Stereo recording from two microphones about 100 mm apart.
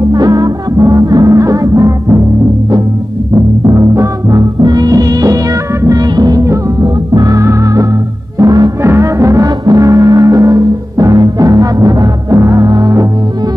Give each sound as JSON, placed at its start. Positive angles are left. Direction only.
{"t": 0.1, "sound": "music", "side_deg": -40}
{"t": 3.7, "sound": "music", "side_deg": -30}